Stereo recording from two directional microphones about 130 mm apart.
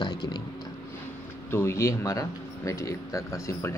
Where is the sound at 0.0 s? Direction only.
35° left (ahead or behind).